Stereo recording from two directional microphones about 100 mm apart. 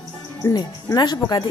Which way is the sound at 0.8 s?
45° left (ahead or behind).